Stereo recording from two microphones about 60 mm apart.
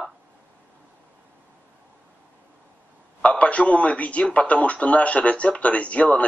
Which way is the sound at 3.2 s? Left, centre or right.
Left.